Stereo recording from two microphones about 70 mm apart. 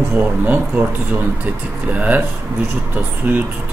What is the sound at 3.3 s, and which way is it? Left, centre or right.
Speech, right.